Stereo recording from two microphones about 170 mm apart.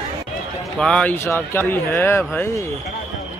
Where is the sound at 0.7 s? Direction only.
5° left (ahead or behind).